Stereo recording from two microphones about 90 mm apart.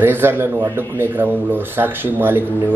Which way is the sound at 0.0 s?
25° right (ahead or behind).